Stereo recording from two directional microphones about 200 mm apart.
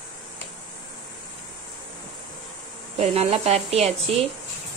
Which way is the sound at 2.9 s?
30° right (ahead or behind).